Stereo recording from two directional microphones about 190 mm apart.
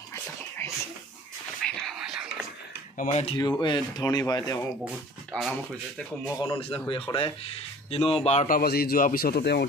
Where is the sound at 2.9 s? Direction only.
40° left (ahead or behind).